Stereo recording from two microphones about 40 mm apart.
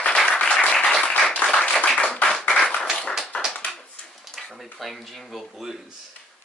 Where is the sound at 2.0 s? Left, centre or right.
Left.